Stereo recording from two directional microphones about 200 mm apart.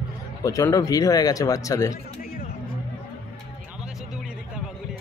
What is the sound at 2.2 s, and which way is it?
Music, 45° left (ahead or behind).